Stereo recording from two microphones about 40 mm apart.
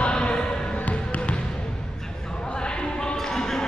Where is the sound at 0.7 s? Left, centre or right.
Left.